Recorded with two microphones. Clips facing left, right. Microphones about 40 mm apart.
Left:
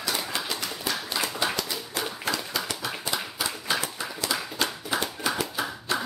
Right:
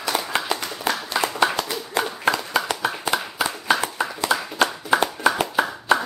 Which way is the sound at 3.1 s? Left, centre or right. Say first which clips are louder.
Right 5 dB; right.